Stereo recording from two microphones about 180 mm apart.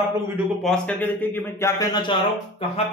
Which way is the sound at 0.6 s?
5° left (ahead or behind).